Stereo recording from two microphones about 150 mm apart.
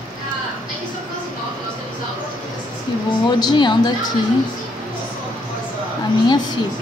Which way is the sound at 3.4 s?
30° left (ahead or behind).